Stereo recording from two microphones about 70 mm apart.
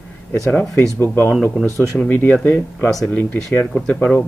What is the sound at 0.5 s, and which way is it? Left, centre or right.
Speech, left.